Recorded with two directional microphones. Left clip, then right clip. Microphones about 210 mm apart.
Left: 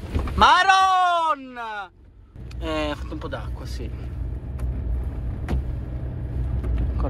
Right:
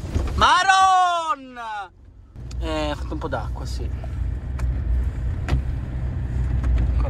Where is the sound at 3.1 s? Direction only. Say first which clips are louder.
Right 5 dB; 30° right (ahead or behind).